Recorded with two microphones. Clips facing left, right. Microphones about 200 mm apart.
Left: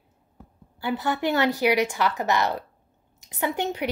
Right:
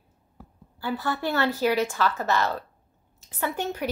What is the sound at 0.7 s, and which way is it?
Speech, 15° left (ahead or behind).